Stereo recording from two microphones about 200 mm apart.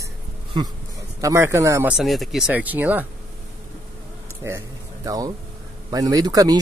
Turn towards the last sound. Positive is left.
turn(degrees=-20)  # may be behind; listen again after turning